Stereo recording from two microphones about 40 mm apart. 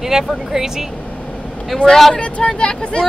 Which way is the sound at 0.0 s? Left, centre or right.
Centre.